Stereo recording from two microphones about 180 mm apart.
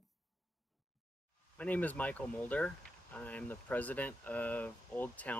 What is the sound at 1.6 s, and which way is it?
Speech, 10° left (ahead or behind).